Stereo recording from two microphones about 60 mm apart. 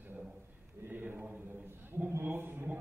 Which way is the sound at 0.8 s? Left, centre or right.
Right.